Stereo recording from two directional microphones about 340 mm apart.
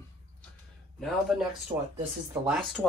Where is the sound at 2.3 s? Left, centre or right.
Centre.